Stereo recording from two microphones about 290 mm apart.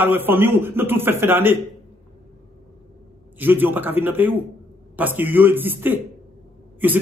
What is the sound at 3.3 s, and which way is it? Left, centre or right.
A man's voice, centre.